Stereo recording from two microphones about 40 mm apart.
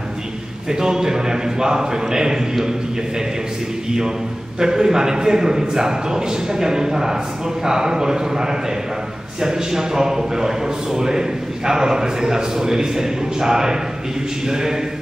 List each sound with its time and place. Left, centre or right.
0.7 s a man's voice: centre
4.6 s a man's voice: centre